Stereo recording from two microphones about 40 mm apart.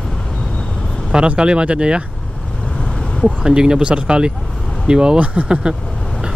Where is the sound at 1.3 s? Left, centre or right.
Right.